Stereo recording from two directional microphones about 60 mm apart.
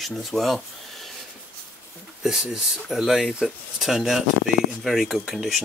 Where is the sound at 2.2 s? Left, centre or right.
Centre.